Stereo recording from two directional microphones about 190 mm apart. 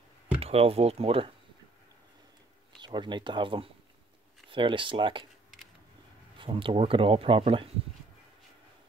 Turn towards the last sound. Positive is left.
turn(degrees=-30)  # may be behind; listen again after turning